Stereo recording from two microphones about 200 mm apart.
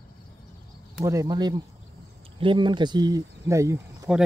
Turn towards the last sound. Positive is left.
turn(degrees=-15)  # may be behind; listen again after turning